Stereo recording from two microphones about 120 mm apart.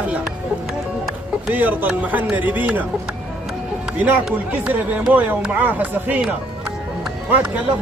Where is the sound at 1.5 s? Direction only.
15° right (ahead or behind).